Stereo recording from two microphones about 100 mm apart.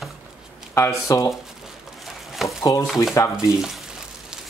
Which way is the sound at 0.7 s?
30° left (ahead or behind).